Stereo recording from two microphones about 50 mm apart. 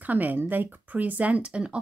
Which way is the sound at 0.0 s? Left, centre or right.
Right.